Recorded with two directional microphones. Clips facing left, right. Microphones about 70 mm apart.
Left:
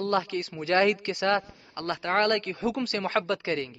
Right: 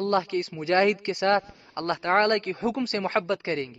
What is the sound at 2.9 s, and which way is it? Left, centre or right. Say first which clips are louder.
Speech: right 1 dB; right.